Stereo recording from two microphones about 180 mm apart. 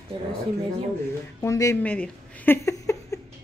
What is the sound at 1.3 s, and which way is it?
Speech, 15° left (ahead or behind).